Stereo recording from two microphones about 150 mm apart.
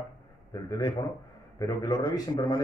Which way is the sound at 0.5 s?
25° left (ahead or behind).